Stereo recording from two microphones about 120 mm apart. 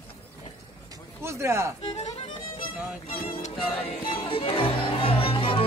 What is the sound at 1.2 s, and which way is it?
Music, 25° right (ahead or behind).